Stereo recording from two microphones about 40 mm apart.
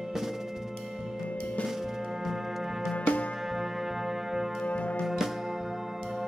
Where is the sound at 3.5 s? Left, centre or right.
Centre.